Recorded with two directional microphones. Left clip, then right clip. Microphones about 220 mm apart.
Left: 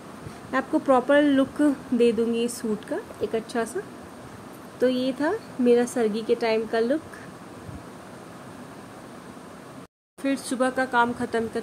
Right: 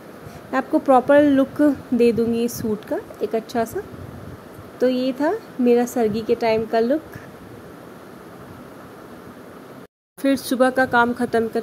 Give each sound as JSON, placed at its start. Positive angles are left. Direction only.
{"t": 0.5, "sound": "speech", "side_deg": -10}
{"t": 4.7, "sound": "speech", "side_deg": -10}
{"t": 10.2, "sound": "speech", "side_deg": -20}